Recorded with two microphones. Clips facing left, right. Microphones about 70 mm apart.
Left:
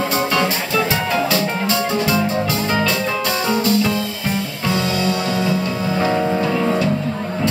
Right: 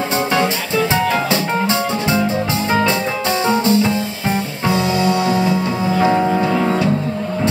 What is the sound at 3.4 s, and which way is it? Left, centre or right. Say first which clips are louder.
Music: right 3 dB; right.